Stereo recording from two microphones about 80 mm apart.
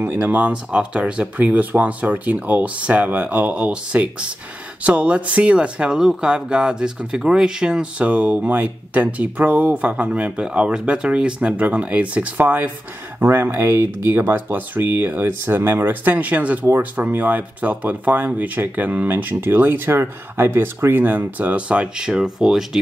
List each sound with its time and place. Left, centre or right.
0.0 s speech: right; by 22.8 s centre